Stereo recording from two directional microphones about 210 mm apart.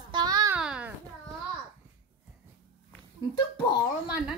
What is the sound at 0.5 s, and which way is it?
Babbling, 5° right (ahead or behind).